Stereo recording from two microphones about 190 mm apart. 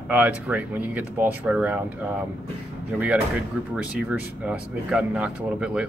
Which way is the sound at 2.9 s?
10° right (ahead or behind).